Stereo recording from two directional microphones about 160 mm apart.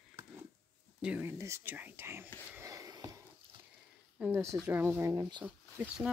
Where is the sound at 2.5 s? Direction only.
20° right (ahead or behind).